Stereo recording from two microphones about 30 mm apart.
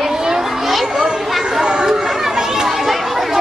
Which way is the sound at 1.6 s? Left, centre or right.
Right.